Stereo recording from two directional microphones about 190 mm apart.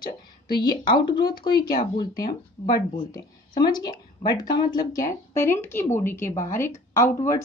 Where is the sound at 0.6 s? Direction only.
20° left (ahead or behind).